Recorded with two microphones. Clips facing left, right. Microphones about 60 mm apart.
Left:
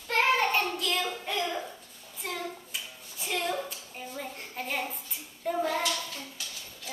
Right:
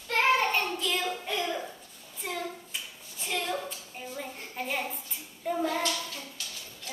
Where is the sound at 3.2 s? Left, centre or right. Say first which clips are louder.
Left 1 dB; centre.